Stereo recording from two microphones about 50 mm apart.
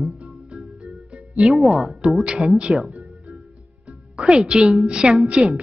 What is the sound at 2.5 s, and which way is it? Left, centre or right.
Speech, centre.